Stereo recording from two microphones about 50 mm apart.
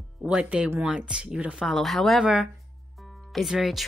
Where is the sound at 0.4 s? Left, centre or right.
Right.